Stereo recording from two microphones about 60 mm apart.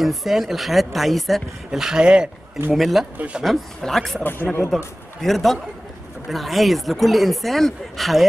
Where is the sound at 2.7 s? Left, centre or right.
Centre.